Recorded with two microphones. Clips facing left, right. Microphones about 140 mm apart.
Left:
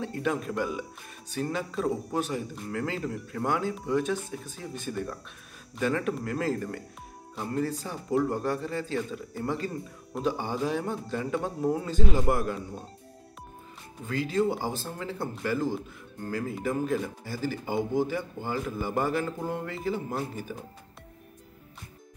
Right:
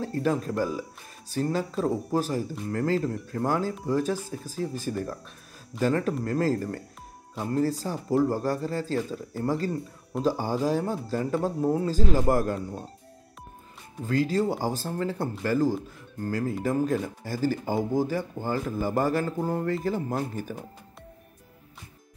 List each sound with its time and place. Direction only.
0.0 s speech: 35° right (ahead or behind)
14.0 s speech: 40° right (ahead or behind)